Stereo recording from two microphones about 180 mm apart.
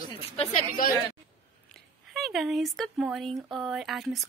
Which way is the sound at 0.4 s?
35° left (ahead or behind).